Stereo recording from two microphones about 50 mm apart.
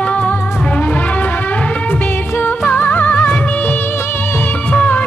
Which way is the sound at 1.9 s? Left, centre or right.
Left.